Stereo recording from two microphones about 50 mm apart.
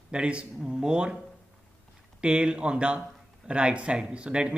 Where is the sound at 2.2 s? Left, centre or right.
Centre.